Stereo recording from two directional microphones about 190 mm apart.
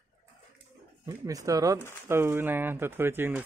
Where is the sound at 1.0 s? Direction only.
20° right (ahead or behind).